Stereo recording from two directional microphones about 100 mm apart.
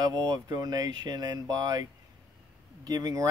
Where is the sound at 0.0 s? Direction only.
40° right (ahead or behind).